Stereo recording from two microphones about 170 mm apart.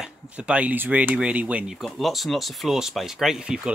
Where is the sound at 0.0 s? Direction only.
5° right (ahead or behind).